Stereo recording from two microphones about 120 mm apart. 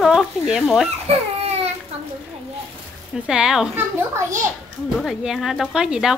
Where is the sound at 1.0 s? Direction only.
60° right (ahead or behind).